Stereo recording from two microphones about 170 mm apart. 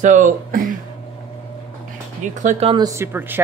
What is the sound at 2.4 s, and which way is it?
Speech, 45° right (ahead or behind).